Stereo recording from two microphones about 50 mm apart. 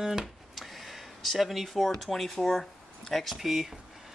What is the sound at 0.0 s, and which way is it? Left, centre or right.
Speech, centre.